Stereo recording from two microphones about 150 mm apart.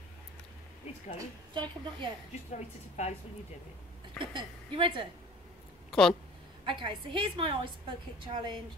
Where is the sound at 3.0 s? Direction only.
50° left (ahead or behind).